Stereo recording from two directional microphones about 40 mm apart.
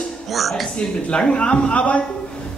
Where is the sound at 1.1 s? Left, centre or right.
Left.